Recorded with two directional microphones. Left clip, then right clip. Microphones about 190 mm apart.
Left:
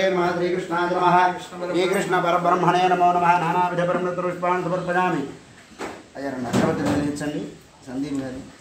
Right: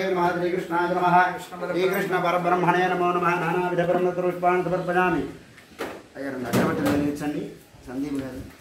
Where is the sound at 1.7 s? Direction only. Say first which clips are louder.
Left 3 dB; 50° left (ahead or behind).